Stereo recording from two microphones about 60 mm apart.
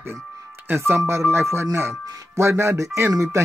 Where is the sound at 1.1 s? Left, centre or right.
Right.